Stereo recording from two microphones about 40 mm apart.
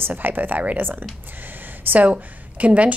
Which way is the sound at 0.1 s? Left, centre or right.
Right.